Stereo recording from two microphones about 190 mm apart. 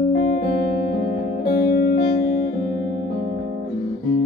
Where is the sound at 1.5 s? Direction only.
50° left (ahead or behind).